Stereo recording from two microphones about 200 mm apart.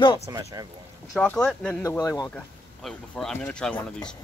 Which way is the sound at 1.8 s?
15° left (ahead or behind).